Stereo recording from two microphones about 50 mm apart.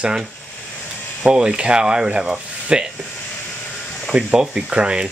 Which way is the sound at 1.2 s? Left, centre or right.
Centre.